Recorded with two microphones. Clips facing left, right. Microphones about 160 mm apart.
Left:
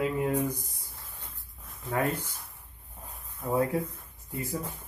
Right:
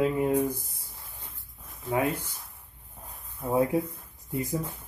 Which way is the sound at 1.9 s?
15° right (ahead or behind).